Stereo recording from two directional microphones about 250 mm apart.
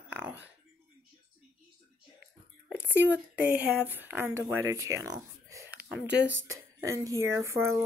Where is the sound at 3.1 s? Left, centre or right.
Centre.